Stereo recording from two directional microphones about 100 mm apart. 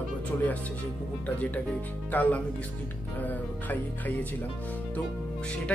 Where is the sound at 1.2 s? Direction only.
15° left (ahead or behind).